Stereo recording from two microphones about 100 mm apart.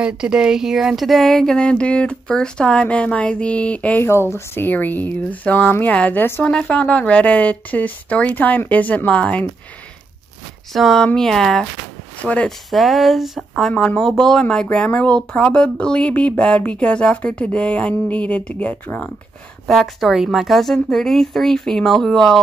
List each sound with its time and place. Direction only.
0.0 s speech: 10° right (ahead or behind); by 4.0 s 15° left (ahead or behind)
4.0 s speech: 25° left (ahead or behind)
10.7 s speech: centre (ahead or behind)
12.7 s speech: centre (ahead or behind); by 19.0 s 15° left (ahead or behind)
19.7 s speech: centre (ahead or behind)